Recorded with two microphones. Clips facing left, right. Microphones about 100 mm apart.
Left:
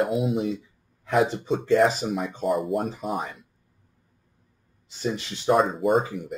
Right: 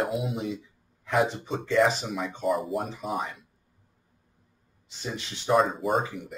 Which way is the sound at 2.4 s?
Centre (ahead or behind).